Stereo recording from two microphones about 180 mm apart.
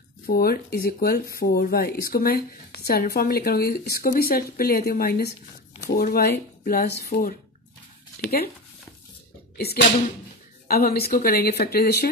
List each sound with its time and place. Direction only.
0.3 s speech: 60° left (ahead or behind)
9.6 s speech: 60° left (ahead or behind)